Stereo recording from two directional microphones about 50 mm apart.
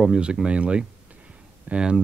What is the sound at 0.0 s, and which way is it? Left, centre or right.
Speech, centre.